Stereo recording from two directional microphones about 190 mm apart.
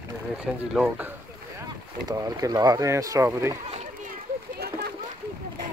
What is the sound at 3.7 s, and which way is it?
Children playing, 35° right (ahead or behind).